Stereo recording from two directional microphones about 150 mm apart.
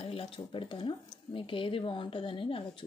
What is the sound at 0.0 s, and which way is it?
Speech, 40° left (ahead or behind).